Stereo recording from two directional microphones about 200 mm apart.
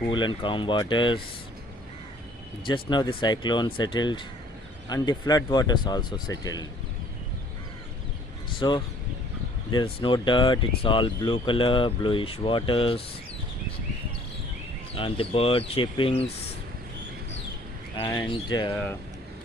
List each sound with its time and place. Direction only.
0.1 s speech: 25° left (ahead or behind)
2.6 s speech: 25° left (ahead or behind)
8.5 s speech: 20° left (ahead or behind)
9.9 s speech: 25° left (ahead or behind)
15.0 s speech: 25° left (ahead or behind)
17.9 s speech: 20° left (ahead or behind)